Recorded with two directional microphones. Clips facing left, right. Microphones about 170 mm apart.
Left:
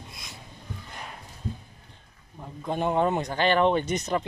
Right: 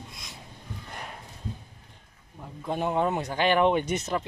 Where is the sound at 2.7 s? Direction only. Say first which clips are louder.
Left 2 dB; 5° right (ahead or behind).